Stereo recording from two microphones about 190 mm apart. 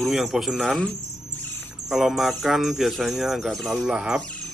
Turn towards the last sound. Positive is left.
turn(degrees=0)  # may be behind; listen again after turning